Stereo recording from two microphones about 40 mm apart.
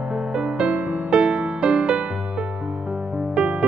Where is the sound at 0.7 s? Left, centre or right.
Right.